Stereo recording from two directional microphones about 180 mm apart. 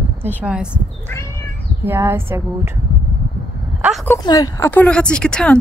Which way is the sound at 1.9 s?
15° right (ahead or behind).